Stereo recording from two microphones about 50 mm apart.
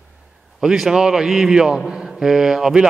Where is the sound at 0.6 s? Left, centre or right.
Centre.